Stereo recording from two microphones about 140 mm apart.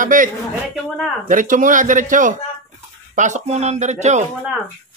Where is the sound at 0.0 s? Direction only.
70° right (ahead or behind).